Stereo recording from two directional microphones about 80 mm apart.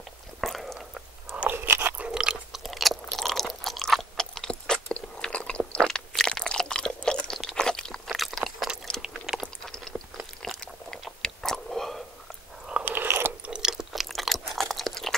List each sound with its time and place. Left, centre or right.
0.4 s biting: centre
1.3 s crunch: centre
2.0 s chewing: centre
5.9 s a sound: centre
7.1 s chewing: centre
8.1 s a sound: centre
9.0 s chewing: centre
9.6 s chewing: centre
12.8 s biting: right
13.5 s chewing: centre